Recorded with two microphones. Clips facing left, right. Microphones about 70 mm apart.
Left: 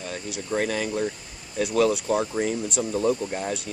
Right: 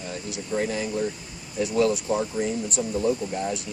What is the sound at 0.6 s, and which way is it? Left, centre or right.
Speech, left.